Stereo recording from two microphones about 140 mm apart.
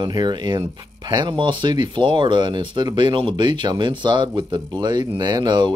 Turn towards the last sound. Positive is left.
turn(degrees=-30)  # may be behind; listen again after turning